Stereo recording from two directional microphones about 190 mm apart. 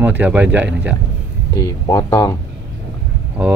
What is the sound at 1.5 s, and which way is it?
Speech, 15° left (ahead or behind).